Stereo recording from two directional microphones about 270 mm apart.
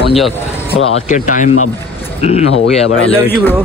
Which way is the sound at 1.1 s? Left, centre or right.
Left.